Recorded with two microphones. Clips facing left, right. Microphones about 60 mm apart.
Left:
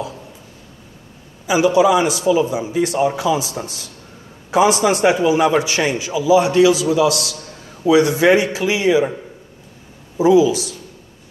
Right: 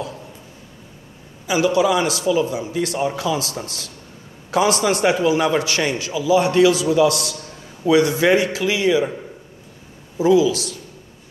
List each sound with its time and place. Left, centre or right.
1.5 s a man's voice: left
8.3 s a man's voice: centre
10.1 s a man's voice: left